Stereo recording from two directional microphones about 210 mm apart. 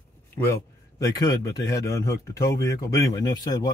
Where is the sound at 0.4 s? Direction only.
15° left (ahead or behind).